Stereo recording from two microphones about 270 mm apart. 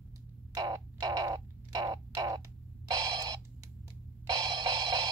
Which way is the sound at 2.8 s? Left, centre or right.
Centre.